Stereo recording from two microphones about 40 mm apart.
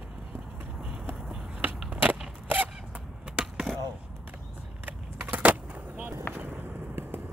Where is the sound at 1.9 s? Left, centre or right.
Right.